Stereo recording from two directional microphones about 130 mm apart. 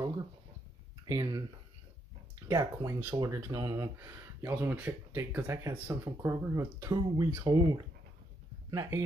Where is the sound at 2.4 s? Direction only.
25° right (ahead or behind).